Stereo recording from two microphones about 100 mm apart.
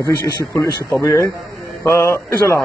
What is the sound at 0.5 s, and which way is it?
Mantra, 25° left (ahead or behind).